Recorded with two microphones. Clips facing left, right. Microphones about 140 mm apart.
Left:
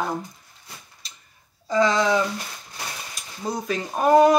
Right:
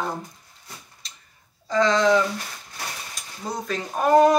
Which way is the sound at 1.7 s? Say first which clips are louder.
Right 1 dB; 10° left (ahead or behind).